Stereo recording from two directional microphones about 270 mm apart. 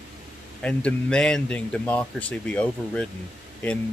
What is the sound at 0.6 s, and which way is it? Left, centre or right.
Speech, centre.